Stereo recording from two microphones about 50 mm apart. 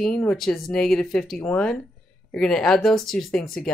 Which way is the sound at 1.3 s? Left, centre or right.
Centre.